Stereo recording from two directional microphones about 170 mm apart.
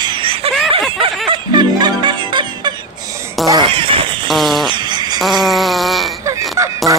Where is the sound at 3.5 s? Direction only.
30° right (ahead or behind).